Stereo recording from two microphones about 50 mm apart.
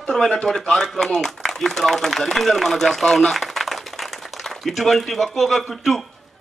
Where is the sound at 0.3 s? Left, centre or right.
Centre.